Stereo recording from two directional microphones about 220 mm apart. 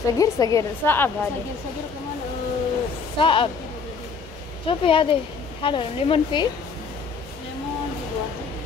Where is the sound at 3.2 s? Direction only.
25° left (ahead or behind).